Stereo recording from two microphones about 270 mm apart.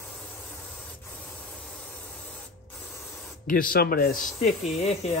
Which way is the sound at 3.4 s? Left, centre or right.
Left.